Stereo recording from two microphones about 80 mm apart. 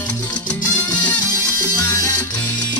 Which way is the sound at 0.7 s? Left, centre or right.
Left.